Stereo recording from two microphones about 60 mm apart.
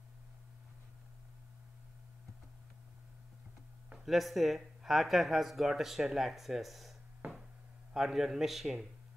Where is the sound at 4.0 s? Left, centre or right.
Centre.